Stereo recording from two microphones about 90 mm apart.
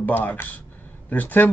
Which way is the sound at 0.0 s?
20° left (ahead or behind).